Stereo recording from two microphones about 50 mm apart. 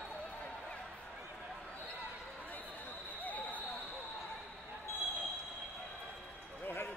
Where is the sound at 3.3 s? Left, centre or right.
Left.